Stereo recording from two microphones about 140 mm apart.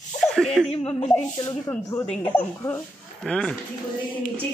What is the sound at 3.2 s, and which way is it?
Speech, 5° left (ahead or behind).